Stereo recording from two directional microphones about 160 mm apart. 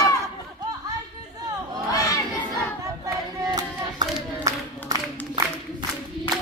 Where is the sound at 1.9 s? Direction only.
25° left (ahead or behind).